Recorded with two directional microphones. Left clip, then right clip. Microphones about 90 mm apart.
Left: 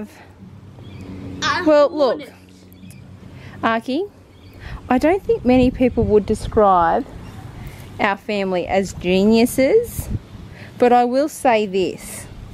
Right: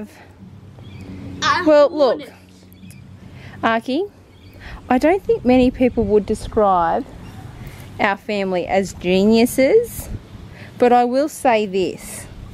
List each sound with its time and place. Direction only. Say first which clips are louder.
1.4 s a woman's voice: right 1 dB; 10° right (ahead or behind)
3.4 s a woman's voice: right 1 dB; 10° right (ahead or behind)
5.9 s speech: left 1 dB; 15° left (ahead or behind)
8.0 s a woman's voice: right 1 dB; 5° right (ahead or behind)
11.2 s a woman's voice: even; centre (ahead or behind)